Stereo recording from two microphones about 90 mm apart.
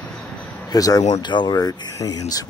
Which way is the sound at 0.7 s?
45° left (ahead or behind).